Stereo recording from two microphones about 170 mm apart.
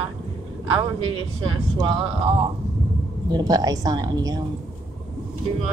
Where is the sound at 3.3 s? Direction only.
25° right (ahead or behind).